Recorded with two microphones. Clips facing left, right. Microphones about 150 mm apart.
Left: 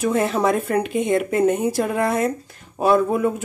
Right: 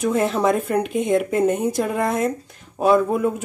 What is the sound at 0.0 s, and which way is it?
A woman's voice, centre (ahead or behind).